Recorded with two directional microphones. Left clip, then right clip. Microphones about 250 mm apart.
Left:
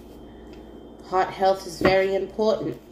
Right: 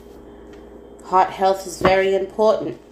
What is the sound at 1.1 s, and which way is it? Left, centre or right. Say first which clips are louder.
Speech: right 5 dB; right.